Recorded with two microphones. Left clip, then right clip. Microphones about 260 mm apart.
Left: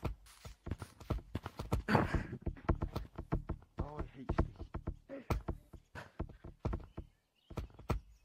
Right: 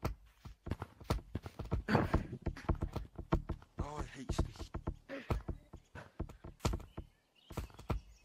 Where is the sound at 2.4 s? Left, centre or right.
Right.